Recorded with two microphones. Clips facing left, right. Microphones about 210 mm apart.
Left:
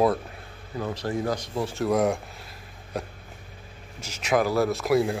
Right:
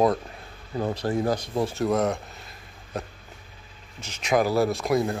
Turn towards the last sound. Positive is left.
turn(degrees=5)  # may be behind; listen again after turning